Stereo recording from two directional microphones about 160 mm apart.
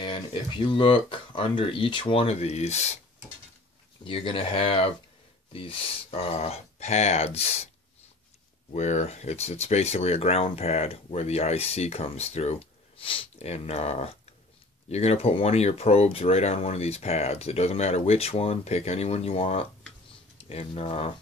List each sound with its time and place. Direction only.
0.0 s speech: 30° left (ahead or behind)
4.0 s speech: 35° left (ahead or behind)
8.7 s speech: 45° left (ahead or behind)